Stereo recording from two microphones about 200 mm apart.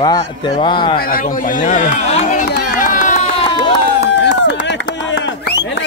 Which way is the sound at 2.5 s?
55° left (ahead or behind).